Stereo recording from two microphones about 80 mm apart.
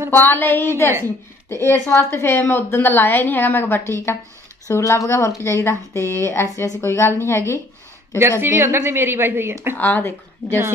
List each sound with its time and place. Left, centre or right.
0.1 s a woman's voice: left
8.2 s speech: right
9.8 s a woman's voice: left